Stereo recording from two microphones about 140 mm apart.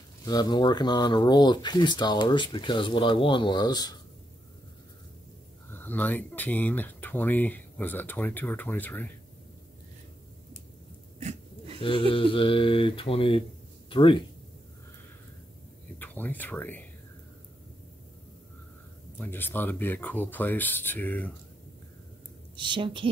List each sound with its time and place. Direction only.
0.2 s speech: 30° left (ahead or behind)
5.7 s speech: 15° left (ahead or behind)
11.1 s a sound: 50° right (ahead or behind)
11.8 s speech: 40° left (ahead or behind)
16.0 s speech: 15° left (ahead or behind)
19.1 s speech: 15° left (ahead or behind)
22.6 s a woman's voice: 35° right (ahead or behind)